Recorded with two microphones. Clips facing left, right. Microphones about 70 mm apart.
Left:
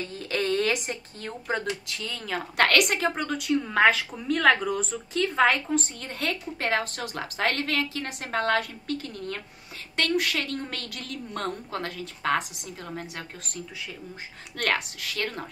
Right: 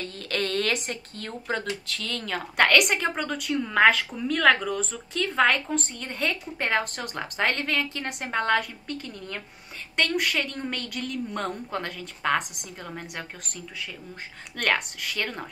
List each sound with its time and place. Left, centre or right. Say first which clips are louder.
0.0 s a woman's voice: left 1 dB; centre
14.6 s a woman's voice: right 1 dB; centre